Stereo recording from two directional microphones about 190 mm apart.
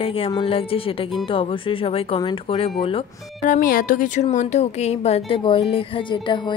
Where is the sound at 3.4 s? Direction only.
45° left (ahead or behind).